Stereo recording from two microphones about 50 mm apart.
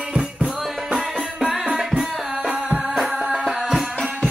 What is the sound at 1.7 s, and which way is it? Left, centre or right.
Tabla, centre.